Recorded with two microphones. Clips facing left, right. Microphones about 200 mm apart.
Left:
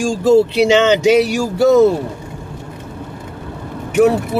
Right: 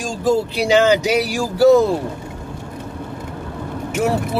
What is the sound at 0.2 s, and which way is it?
Speech, 25° left (ahead or behind).